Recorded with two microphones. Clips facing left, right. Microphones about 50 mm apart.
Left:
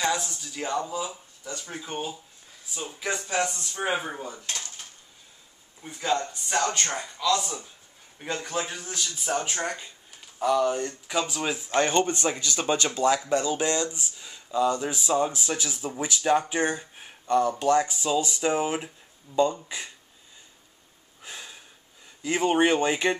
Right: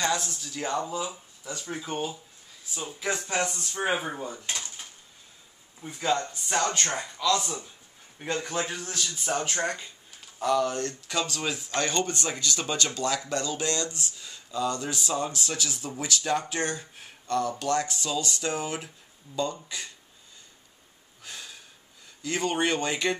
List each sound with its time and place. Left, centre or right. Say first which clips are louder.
0.0 s speech: left 1 dB; centre
4.3 s speech: right 1 dB; centre
4.6 s dishes: even; right
5.8 s speech: even; centre
21.2 s sniff: left 1 dB; centre
22.2 s speech: left 5 dB; centre